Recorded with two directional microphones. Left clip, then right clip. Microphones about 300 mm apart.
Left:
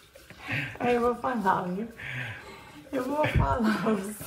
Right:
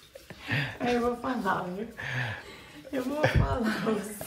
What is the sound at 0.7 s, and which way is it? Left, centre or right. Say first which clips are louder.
Speech: left 5 dB; centre.